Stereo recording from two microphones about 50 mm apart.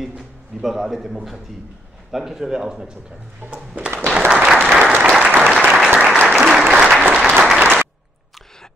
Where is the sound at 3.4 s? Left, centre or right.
Right.